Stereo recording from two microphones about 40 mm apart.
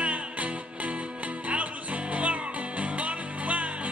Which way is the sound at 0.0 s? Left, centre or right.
Right.